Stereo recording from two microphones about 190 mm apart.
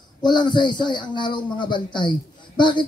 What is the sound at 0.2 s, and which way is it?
Speech, 25° left (ahead or behind).